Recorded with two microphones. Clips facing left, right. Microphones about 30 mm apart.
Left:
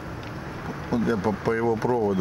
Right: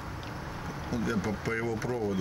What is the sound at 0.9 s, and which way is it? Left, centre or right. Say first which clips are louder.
Speech: left 8 dB; left.